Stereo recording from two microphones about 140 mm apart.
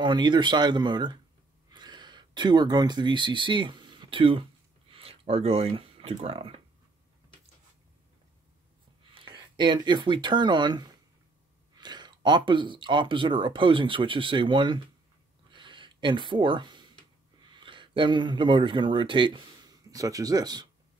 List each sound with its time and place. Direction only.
0.0 s speech: 35° right (ahead or behind)
4.9 s a sound: 40° right (ahead or behind)
6.2 s speech: 45° right (ahead or behind)
9.1 s speech: 35° right (ahead or behind)
15.5 s a sound: 35° right (ahead or behind)
17.5 s speech: 35° right (ahead or behind)